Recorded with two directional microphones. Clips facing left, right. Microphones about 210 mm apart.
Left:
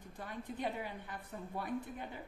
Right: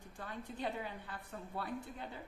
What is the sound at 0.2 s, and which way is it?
A woman's voice, 15° left (ahead or behind).